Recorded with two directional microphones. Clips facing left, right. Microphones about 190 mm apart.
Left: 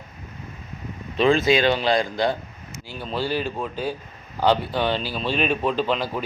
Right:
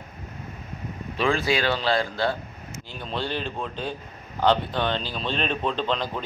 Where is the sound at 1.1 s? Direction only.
20° left (ahead or behind).